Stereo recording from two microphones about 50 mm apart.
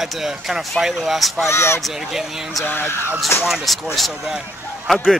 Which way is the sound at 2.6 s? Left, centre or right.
Left.